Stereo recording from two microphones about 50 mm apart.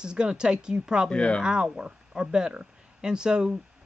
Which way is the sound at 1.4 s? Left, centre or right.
Centre.